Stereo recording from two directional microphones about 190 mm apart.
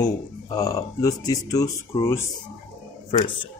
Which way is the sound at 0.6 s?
15° left (ahead or behind).